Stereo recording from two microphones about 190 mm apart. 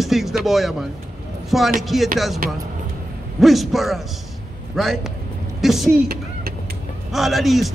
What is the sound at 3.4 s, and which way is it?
A woman's voice, centre (ahead or behind).